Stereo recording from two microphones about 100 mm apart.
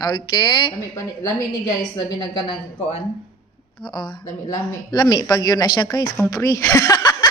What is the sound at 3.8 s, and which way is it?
A woman's voice, 50° left (ahead or behind).